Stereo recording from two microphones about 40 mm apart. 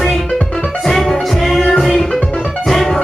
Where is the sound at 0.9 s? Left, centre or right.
Centre.